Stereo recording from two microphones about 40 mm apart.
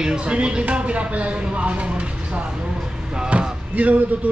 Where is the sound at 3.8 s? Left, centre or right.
Right.